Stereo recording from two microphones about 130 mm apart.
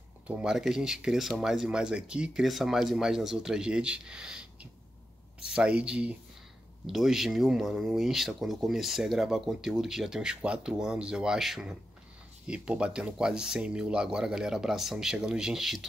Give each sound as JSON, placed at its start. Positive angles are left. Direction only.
{"t": 0.3, "sound": "speech", "side_deg": -5}